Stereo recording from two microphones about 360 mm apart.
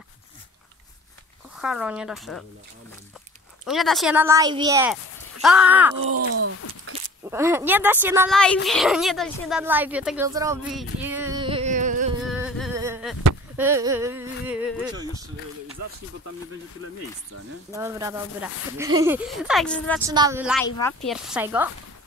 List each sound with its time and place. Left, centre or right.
1.6 s speech: centre
3.6 s speech: centre
6.1 s groan: right
7.2 s speech: centre
12.2 s insect: centre
13.6 s speech: centre
17.7 s speech: centre
20.0 s speech: centre
20.6 s speech: centre